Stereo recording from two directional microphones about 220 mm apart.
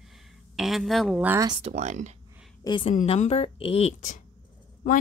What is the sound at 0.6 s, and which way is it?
Speech, centre (ahead or behind).